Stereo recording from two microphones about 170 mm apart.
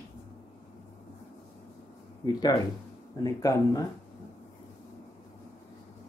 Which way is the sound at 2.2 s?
25° left (ahead or behind).